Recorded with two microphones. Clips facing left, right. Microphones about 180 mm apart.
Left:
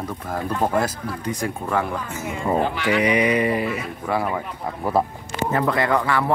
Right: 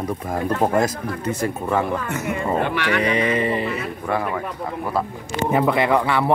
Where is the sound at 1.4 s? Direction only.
5° right (ahead or behind).